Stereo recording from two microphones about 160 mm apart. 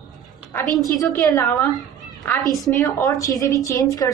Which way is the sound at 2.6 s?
20° left (ahead or behind).